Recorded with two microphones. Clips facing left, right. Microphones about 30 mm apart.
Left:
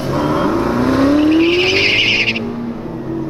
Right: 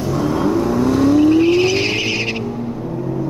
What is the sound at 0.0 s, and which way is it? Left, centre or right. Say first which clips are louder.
Vehicle: left 2 dB; left.